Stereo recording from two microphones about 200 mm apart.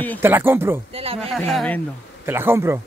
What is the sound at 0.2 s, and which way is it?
Speech, 10° right (ahead or behind).